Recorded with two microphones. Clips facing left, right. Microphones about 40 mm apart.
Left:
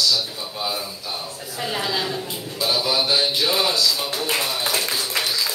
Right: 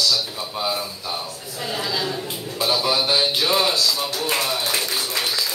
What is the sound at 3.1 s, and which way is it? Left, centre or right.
A man's voice, centre.